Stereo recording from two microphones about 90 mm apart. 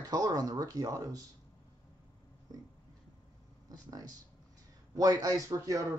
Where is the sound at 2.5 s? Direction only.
45° right (ahead or behind).